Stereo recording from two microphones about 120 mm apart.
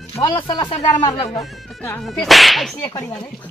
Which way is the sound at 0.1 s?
35° left (ahead or behind).